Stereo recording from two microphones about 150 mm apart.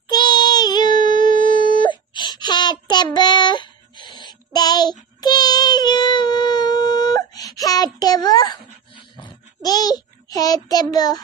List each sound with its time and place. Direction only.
0.1 s music: 30° left (ahead or behind)
1.2 s busy signal: 60° right (ahead or behind)
1.5 s child singing: 30° left (ahead or behind)
5.2 s music: 25° left (ahead or behind)